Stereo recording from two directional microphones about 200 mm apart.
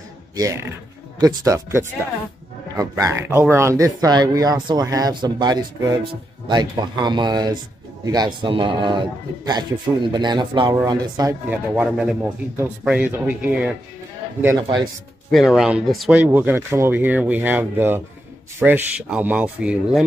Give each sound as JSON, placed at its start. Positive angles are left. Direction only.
{"t": 1.2, "sound": "a man's voice", "side_deg": -15}
{"t": 11.7, "sound": "speech", "side_deg": -5}
{"t": 15.3, "sound": "speech", "side_deg": 0}